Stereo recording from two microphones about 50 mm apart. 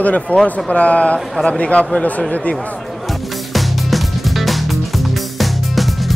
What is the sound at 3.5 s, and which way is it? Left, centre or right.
Music, centre.